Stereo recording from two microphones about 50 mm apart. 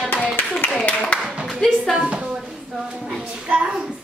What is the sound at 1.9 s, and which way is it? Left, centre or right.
A woman's voice, right.